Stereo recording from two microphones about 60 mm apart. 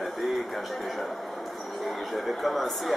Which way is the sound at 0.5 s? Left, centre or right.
Centre.